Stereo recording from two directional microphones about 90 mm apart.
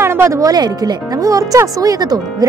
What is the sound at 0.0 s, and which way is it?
Speech, 30° right (ahead or behind).